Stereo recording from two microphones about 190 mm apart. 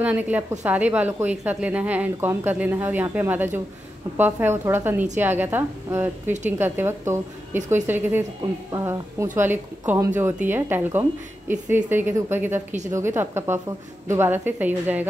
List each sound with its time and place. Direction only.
0.0 s a woman's voice: 10° right (ahead or behind)